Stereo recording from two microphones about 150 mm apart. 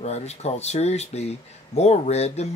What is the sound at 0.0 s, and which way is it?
Speech, 45° left (ahead or behind).